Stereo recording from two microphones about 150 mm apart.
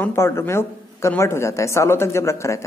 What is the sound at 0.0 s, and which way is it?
Speech, 15° left (ahead or behind).